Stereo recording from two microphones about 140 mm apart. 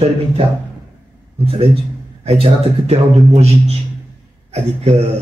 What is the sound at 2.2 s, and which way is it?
A man's voice, 45° right (ahead or behind).